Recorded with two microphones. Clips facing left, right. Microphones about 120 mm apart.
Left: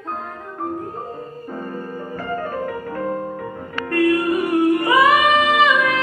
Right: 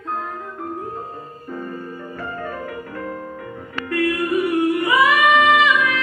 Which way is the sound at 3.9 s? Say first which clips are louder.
Left 3 dB; 30° left (ahead or behind).